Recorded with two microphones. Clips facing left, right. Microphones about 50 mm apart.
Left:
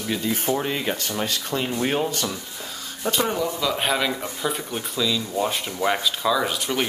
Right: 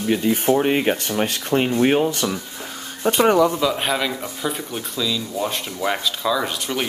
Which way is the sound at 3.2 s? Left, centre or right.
Right.